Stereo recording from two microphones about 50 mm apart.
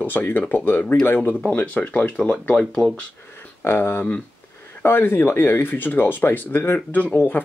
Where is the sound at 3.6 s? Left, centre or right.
Left.